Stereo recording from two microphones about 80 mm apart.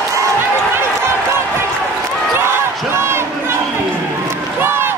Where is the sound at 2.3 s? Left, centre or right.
Right.